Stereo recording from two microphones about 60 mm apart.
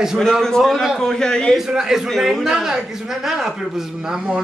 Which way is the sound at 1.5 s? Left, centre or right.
Centre.